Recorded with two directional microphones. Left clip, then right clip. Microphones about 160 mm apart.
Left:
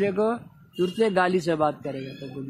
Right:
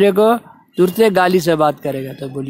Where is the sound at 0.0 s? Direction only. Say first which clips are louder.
Right 12 dB; 40° right (ahead or behind).